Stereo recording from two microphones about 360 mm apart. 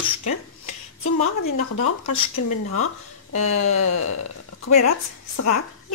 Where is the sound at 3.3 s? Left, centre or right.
Left.